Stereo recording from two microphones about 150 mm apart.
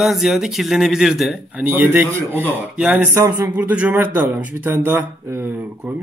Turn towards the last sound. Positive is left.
turn(degrees=-10)  # may be behind; listen again after turning